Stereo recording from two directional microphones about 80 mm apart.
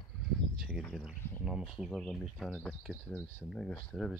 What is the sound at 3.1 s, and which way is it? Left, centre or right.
Speech, left.